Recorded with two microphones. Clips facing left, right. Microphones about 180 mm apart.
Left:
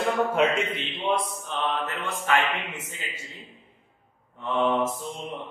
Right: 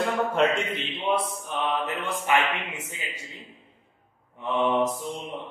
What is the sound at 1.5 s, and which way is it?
Mantra, 10° right (ahead or behind).